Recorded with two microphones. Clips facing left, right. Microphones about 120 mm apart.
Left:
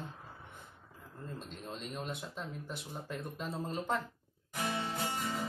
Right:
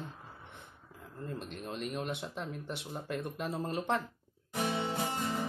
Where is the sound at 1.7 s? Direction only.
65° right (ahead or behind).